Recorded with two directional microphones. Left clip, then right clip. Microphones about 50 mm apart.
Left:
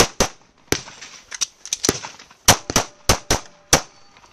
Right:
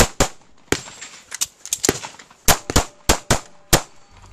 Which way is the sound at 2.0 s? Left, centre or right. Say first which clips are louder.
Even; right.